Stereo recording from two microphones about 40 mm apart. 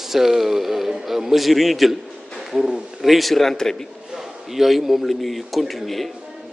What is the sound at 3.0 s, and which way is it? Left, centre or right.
Speech, centre.